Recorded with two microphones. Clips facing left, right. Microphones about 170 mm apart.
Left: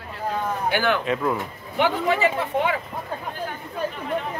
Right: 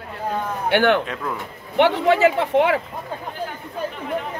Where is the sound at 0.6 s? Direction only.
65° right (ahead or behind).